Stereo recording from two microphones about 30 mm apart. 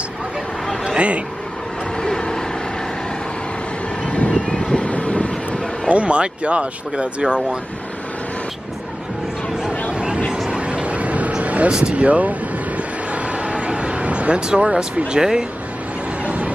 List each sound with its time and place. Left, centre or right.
0.9 s a man's voice: right
2.0 s vehicle: left
4.3 s vehicle: left
4.6 s vehicle: left
5.9 s speech: right
9.9 s a sound: right
11.4 s vehicle: right
14.5 s speech: right
16.3 s music: right